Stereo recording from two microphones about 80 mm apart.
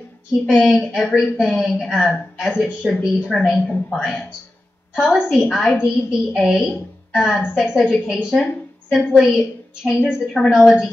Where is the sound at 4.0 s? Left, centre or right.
Centre.